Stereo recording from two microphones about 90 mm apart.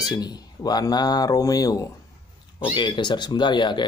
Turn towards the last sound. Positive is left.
turn(degrees=60)  # may be behind; listen again after turning